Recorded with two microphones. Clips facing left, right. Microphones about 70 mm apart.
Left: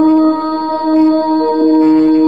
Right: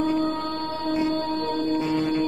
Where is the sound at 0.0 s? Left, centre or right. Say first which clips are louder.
Left 14 dB; left.